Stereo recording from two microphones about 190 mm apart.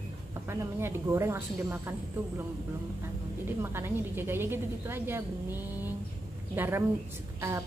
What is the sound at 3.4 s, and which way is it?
A woman's voice, 10° right (ahead or behind).